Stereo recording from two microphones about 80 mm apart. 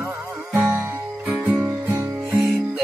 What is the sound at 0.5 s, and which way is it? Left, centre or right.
Music, right.